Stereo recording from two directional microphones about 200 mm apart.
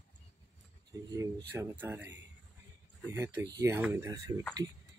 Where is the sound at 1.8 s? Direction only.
10° right (ahead or behind).